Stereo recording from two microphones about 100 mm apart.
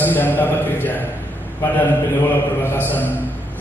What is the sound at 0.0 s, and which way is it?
A man's voice, 20° left (ahead or behind).